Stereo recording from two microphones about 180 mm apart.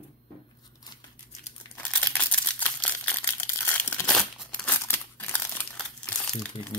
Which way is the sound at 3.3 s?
15° left (ahead or behind).